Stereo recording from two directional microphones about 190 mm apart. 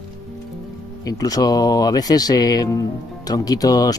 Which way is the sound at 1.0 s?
20° left (ahead or behind).